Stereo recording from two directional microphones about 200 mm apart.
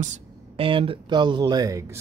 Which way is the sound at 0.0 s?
30° right (ahead or behind).